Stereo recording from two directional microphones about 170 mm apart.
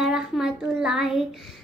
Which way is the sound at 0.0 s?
5° right (ahead or behind).